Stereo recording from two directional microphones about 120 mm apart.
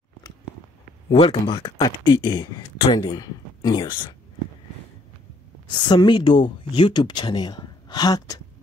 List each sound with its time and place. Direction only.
1.1 s speech: 45° left (ahead or behind)
1.8 s speech: 35° left (ahead or behind)
5.7 s speech: 40° left (ahead or behind)